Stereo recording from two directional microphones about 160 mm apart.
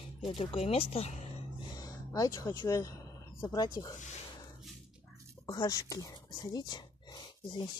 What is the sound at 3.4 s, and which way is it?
Speech, 25° left (ahead or behind).